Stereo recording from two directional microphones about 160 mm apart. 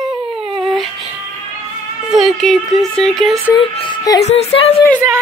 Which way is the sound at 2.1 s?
Centre (ahead or behind).